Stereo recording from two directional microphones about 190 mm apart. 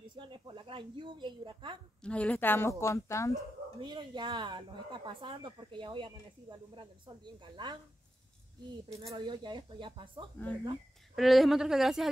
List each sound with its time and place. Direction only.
0.1 s speech: 25° right (ahead or behind)
2.0 s a woman's voice: 5° left (ahead or behind)
3.8 s speech: 25° right (ahead or behind)
9.1 s speech: 25° right (ahead or behind)
11.1 s a woman's voice: centre (ahead or behind)